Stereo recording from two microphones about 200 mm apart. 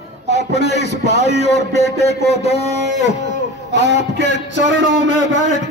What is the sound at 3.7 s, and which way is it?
Speech, 60° right (ahead or behind).